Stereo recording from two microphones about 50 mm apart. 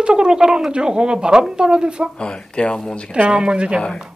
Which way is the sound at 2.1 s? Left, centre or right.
Centre.